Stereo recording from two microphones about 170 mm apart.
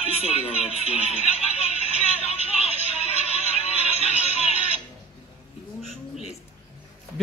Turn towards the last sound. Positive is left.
turn(degrees=40)  # may be behind; listen again after turning